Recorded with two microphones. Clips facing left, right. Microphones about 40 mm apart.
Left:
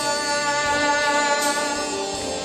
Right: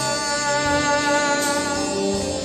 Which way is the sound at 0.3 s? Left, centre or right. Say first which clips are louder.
Right 2 dB; centre.